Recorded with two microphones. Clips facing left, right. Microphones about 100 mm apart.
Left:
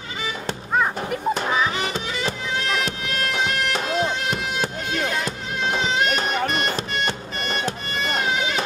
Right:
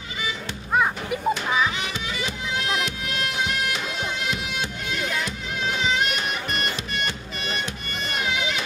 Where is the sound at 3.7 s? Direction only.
45° left (ahead or behind).